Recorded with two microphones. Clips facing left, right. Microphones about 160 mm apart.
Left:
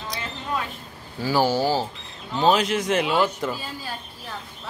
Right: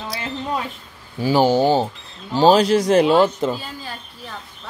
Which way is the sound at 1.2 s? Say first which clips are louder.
Right 5 dB; 20° right (ahead or behind).